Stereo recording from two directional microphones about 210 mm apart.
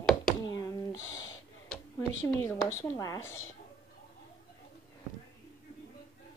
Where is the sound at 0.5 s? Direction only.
15° left (ahead or behind).